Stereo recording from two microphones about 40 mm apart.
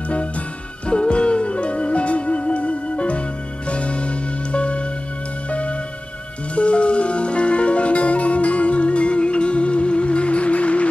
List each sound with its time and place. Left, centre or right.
0.8 s music: left